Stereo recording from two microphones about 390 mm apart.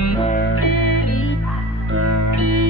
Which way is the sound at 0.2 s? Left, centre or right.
Centre.